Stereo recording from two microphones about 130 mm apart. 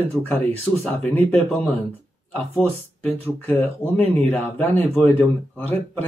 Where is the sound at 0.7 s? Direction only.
10° right (ahead or behind).